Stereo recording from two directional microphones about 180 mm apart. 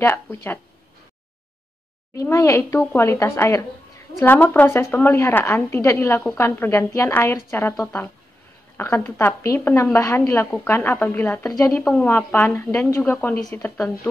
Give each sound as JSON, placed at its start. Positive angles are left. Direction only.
{"t": 0.0, "sound": "a woman's voice", "side_deg": 15}
{"t": 2.1, "sound": "a woman's voice", "side_deg": 15}